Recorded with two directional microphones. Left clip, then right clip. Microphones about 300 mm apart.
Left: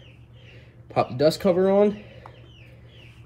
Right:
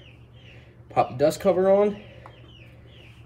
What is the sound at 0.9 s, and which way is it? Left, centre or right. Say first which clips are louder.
Speech: even; centre.